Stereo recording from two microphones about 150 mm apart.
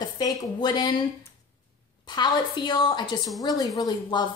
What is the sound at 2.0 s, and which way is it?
A woman's voice, 30° left (ahead or behind).